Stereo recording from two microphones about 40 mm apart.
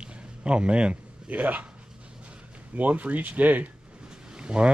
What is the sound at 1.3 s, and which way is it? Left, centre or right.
Speech, right.